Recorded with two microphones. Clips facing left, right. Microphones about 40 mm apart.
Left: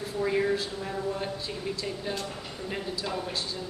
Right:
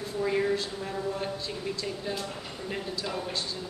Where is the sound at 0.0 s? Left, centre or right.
Centre.